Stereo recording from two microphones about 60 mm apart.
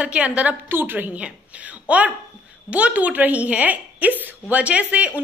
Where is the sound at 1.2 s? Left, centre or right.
Right.